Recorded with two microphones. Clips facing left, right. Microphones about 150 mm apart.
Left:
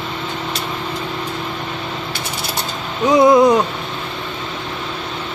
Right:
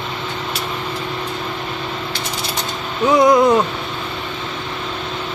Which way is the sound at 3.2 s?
20° left (ahead or behind).